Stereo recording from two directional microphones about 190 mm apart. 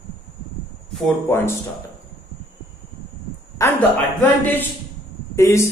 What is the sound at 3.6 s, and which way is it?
A man's voice, 15° left (ahead or behind).